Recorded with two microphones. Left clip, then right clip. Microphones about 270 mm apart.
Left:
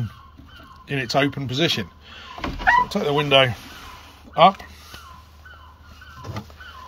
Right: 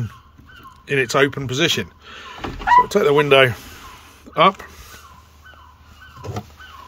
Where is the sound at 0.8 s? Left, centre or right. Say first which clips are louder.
Right 5 dB; centre.